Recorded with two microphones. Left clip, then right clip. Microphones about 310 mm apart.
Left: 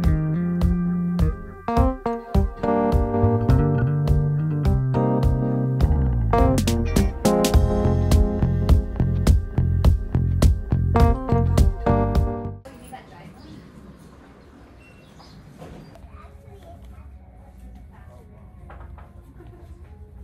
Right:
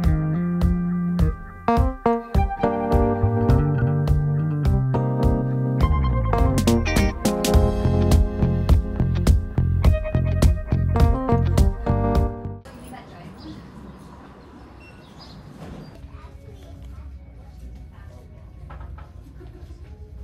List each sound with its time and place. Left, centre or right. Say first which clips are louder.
0.0 s music: even; centre